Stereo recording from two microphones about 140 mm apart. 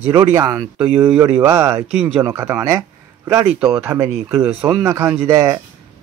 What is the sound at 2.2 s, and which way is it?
Speech, 20° right (ahead or behind).